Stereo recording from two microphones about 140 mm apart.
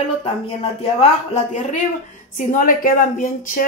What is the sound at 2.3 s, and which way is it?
A woman's voice, 65° left (ahead or behind).